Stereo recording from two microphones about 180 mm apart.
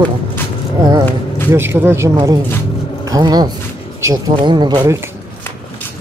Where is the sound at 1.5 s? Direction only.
15° right (ahead or behind).